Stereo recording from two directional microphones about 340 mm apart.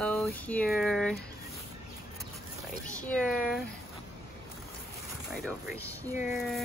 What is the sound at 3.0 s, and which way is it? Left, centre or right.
Speech, centre.